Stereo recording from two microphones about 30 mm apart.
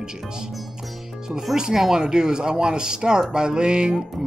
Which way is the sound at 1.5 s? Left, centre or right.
Centre.